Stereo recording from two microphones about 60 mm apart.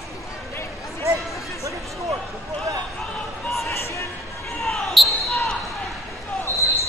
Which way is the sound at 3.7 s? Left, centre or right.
Left.